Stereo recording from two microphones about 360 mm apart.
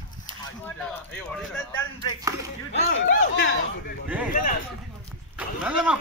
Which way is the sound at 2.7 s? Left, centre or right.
Left.